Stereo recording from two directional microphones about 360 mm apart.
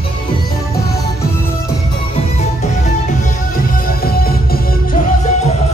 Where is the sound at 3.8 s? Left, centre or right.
Left.